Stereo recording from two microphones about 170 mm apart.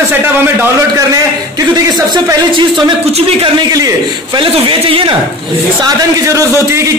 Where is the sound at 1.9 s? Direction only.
25° right (ahead or behind).